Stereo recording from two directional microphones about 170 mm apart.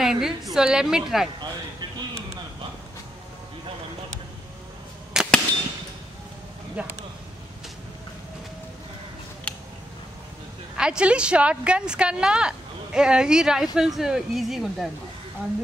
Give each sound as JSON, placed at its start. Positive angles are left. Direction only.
{"t": 0.0, "sound": "a woman's voice", "side_deg": 0}
{"t": 1.4, "sound": "a sound", "side_deg": -25}
{"t": 5.1, "sound": "arrow", "side_deg": -5}
{"t": 6.8, "sound": "speech", "side_deg": -5}
{"t": 10.8, "sound": "a woman's voice", "side_deg": -5}